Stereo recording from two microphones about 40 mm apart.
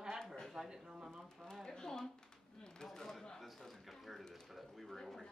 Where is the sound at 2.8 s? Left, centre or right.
Centre.